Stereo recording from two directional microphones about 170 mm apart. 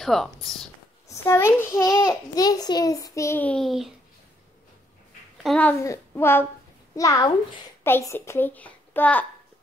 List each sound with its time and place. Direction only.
0.0 s speech: centre (ahead or behind)
1.0 s a child's voice: 15° left (ahead or behind); by 3.9 s centre (ahead or behind)
5.4 s speech: 5° left (ahead or behind)
5.8 s a child's voice: 15° left (ahead or behind)